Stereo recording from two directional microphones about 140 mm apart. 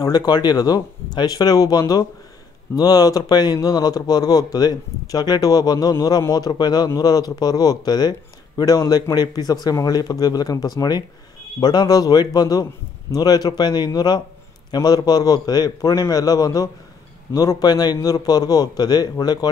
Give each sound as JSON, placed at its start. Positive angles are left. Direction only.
{"t": 0.0, "sound": "a man's voice", "side_deg": 30}